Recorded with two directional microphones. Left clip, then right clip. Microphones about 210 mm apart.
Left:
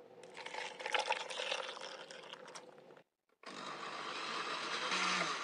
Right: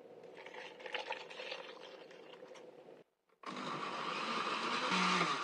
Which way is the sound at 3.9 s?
30° left (ahead or behind).